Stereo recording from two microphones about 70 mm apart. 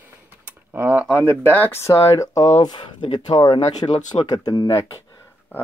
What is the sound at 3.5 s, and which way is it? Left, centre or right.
Speech, left.